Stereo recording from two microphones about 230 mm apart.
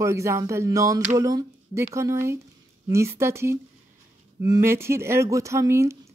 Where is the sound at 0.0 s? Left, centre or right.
Centre.